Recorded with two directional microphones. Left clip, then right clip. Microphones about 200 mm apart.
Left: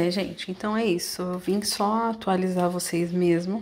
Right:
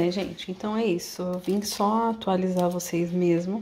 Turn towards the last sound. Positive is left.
turn(degrees=-5)  # may be behind; listen again after turning